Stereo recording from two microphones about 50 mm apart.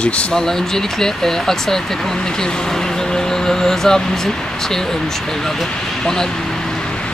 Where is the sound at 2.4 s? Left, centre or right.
Centre.